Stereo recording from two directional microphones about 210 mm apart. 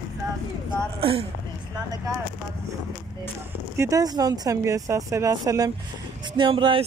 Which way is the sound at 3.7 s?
15° right (ahead or behind).